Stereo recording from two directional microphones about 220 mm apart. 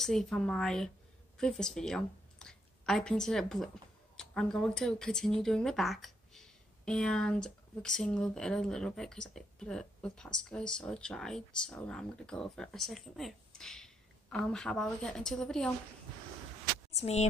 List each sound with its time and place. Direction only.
0.0 s a woman's voice: centre (ahead or behind)
16.9 s speech: 30° left (ahead or behind)